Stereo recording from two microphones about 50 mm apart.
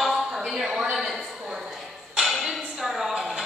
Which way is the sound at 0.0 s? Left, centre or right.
Centre.